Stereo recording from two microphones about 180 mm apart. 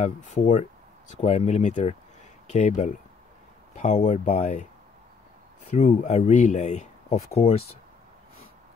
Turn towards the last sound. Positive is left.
turn(degrees=35)  # may be behind; listen again after turning